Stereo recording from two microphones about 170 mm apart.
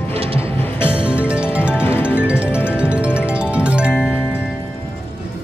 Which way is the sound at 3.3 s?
5° right (ahead or behind).